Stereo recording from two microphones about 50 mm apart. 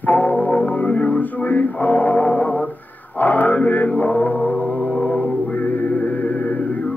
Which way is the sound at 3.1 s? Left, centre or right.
Left.